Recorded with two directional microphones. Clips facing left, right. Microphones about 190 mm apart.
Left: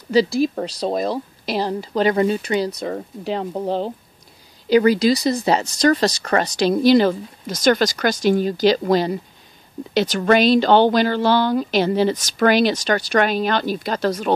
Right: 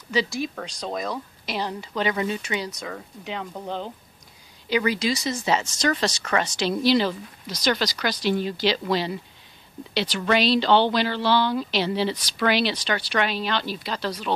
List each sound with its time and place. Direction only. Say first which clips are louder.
0.1 s speech: left 9 dB; 35° left (ahead or behind)